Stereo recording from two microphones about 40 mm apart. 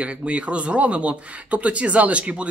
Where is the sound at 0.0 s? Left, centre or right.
Right.